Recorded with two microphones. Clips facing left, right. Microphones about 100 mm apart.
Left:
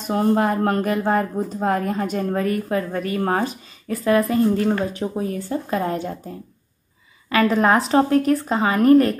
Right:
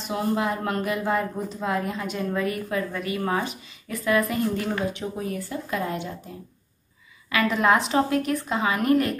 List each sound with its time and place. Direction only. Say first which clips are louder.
0.0 s a woman's voice: left 6 dB; 45° left (ahead or behind)